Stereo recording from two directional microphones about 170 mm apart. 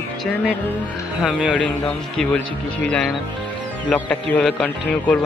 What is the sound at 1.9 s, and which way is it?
Speech, 10° left (ahead or behind).